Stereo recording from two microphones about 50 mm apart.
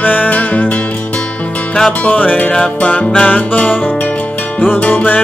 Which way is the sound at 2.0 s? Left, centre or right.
Left.